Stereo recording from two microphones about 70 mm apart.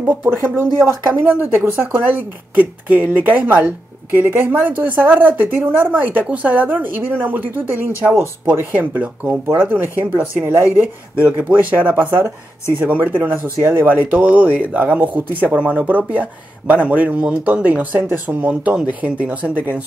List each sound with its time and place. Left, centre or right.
0.0 s speech: right
1.4 s speech: right
11.1 s speech: right